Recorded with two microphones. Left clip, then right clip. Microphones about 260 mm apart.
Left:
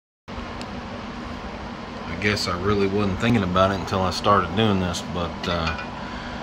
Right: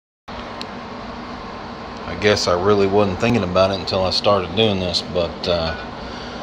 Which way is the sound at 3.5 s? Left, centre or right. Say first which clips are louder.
Right 3 dB; left.